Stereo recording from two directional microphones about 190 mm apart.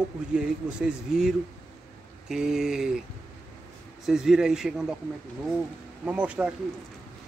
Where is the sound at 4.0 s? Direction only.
Centre (ahead or behind).